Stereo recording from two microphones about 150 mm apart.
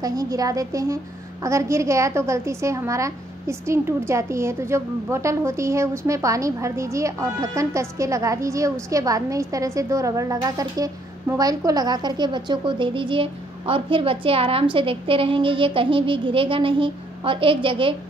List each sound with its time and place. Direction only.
0.0 s a woman's voice: 25° right (ahead or behind)